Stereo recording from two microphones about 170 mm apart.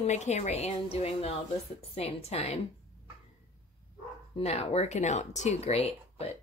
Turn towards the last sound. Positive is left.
turn(degrees=40)  # may be behind; listen again after turning